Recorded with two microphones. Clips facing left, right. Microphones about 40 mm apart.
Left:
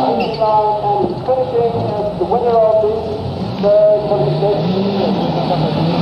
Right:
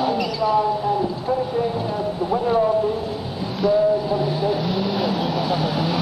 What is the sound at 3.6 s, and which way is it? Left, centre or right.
Vehicle, centre.